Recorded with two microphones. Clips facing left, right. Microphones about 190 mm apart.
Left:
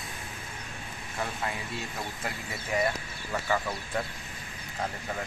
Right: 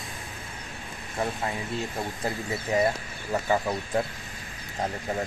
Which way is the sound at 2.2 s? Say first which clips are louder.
Right 7 dB; 35° right (ahead or behind).